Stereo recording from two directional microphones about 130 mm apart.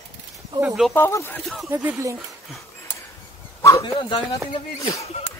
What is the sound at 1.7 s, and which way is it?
Speech, 15° right (ahead or behind).